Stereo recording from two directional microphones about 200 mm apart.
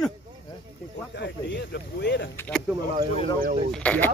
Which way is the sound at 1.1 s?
60° left (ahead or behind).